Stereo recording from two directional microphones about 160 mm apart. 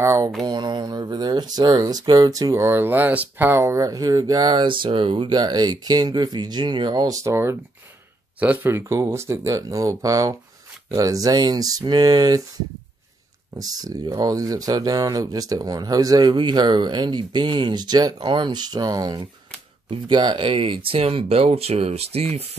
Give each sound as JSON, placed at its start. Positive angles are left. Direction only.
{"t": 0.0, "sound": "speech", "side_deg": -20}
{"t": 0.4, "sound": "speech", "side_deg": -30}